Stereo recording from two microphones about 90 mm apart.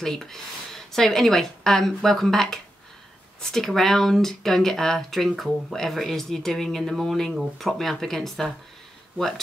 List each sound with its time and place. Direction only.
0.0 s speech: 5° left (ahead or behind)